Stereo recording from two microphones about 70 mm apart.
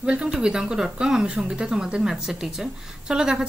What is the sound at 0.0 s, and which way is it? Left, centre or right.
Speech, centre.